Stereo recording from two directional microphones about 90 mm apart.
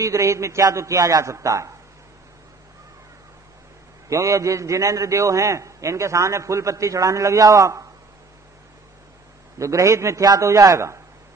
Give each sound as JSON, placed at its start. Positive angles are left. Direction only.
{"t": 0.0, "sound": "a man's voice", "side_deg": -35}
{"t": 4.1, "sound": "a man's voice", "side_deg": -40}
{"t": 9.6, "sound": "a man's voice", "side_deg": -35}